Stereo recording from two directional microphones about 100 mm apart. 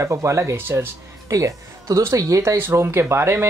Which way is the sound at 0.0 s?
30° right (ahead or behind).